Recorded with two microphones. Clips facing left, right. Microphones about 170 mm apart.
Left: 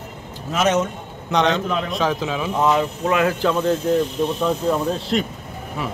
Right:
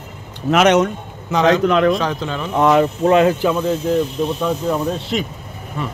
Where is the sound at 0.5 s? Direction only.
70° right (ahead or behind).